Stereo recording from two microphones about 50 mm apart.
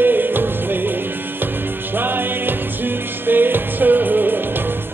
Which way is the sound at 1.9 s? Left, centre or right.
Right.